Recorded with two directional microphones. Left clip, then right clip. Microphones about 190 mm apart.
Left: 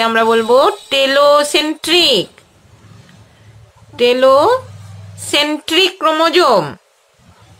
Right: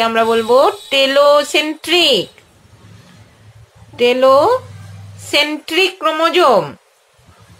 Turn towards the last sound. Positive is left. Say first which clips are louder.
# even
turn(degrees=30)  # may be behind; listen again after turning